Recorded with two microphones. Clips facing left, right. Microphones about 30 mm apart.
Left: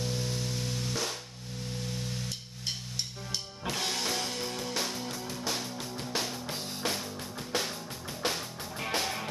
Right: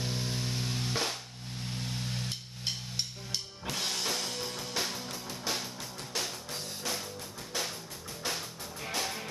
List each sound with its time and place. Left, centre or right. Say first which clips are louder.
0.0 s music: left 1 dB; centre
3.6 s music: left 2 dB; centre
4.7 s music: left 1 dB; centre
7.5 s music: left 3 dB; left